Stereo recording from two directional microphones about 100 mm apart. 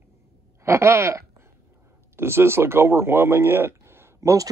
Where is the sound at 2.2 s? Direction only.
25° right (ahead or behind).